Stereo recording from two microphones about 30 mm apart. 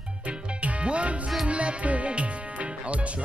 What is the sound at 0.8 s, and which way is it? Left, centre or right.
Music, right.